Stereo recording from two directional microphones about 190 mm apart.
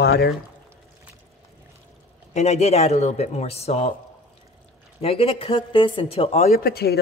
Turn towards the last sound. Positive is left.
turn(degrees=55)  # may be behind; listen again after turning